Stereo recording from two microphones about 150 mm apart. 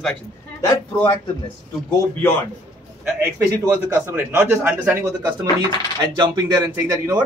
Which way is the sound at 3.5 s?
20° right (ahead or behind).